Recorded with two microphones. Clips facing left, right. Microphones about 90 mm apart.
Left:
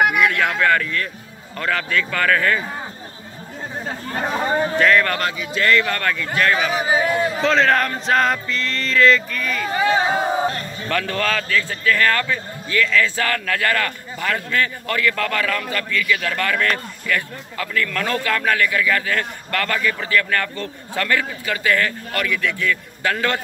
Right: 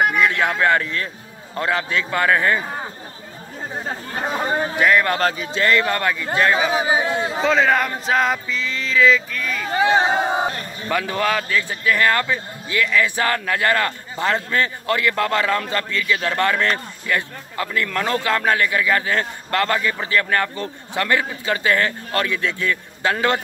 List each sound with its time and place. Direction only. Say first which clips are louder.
0.2 s a man's voice: even; 20° right (ahead or behind)
4.6 s a man's voice: left 1 dB; 15° right (ahead or behind)
5.2 s a man's voice: right 3 dB; 35° right (ahead or behind)
5.6 s a man's voice: even; 20° right (ahead or behind)
7.4 s male singing: even; 5° right (ahead or behind)
9.8 s a man's voice: right 1 dB; 25° right (ahead or behind)
10.9 s a man's voice: right 1 dB; 15° right (ahead or behind)